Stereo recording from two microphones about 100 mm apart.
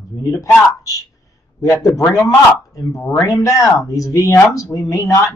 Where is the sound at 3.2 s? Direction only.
30° left (ahead or behind).